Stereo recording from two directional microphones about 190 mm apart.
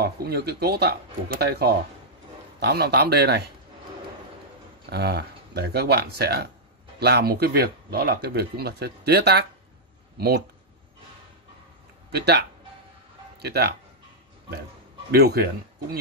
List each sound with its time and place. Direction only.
0.0 s speech: 55° right (ahead or behind)
4.8 s speech: 60° right (ahead or behind)
12.1 s speech: 60° right (ahead or behind)
15.0 s speech: 55° right (ahead or behind)